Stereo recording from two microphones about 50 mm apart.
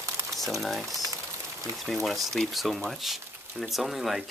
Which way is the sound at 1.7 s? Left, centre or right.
Centre.